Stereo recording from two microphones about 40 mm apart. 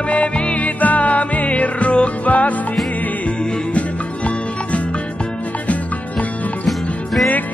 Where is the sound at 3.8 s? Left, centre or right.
Left.